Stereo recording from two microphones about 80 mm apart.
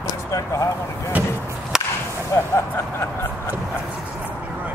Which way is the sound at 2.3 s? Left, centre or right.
Left.